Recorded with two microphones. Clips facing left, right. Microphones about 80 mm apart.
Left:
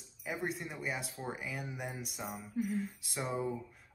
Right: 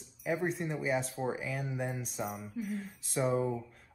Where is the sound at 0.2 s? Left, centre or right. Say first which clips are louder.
Right 6 dB; centre.